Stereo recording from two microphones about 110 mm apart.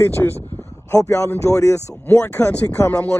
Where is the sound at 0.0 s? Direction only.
20° left (ahead or behind).